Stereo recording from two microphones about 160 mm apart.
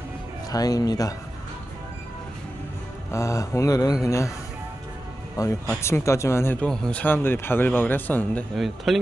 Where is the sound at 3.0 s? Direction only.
20° left (ahead or behind).